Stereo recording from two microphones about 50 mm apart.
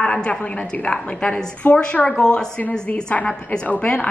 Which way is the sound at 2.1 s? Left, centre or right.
Centre.